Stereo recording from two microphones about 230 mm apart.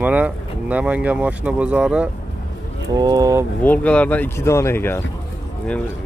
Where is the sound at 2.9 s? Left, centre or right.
Centre.